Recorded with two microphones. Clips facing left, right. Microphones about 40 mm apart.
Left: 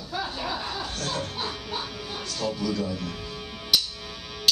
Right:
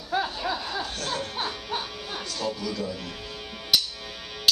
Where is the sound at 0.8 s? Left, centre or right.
Centre.